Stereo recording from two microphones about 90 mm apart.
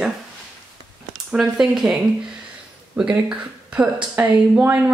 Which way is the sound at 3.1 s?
15° right (ahead or behind).